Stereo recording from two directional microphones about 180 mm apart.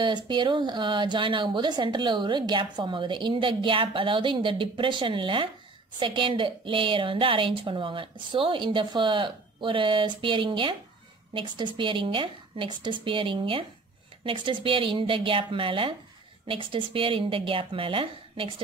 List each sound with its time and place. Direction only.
0.0 s speech: 25° right (ahead or behind)